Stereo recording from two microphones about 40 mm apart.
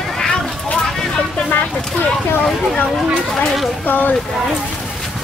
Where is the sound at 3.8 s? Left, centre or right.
Left.